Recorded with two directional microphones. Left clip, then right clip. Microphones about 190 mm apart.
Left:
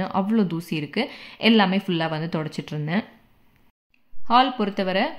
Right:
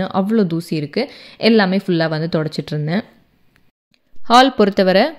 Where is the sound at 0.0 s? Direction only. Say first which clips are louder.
Right 6 dB; 25° right (ahead or behind).